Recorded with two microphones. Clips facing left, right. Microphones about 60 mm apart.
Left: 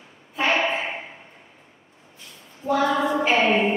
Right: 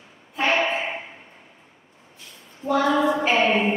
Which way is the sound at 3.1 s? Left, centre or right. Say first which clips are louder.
Even; centre.